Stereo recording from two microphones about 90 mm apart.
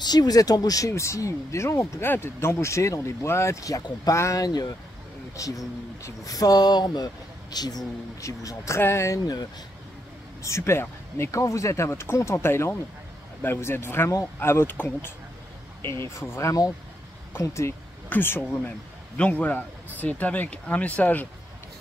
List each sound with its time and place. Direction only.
0.0 s speech: 50° left (ahead or behind)
8.2 s speech: 35° left (ahead or behind)
10.4 s speech: 30° left (ahead or behind)
15.9 s speech: 30° left (ahead or behind)
19.1 s speech: 15° left (ahead or behind)